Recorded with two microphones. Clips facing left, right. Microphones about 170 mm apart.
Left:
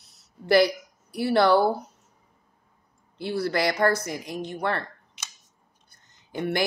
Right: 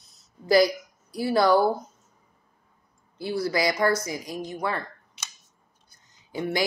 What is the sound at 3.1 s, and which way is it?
Speech, 65° left (ahead or behind).